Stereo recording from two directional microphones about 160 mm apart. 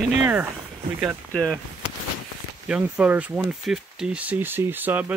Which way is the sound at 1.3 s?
5° left (ahead or behind).